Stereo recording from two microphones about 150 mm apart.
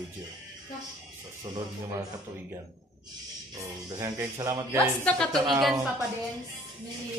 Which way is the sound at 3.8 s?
25° right (ahead or behind).